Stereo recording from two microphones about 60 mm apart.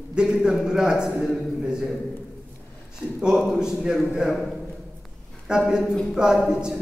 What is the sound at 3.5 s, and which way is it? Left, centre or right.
Speech, centre.